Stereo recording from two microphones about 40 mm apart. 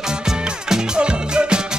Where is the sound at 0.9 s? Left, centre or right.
Right.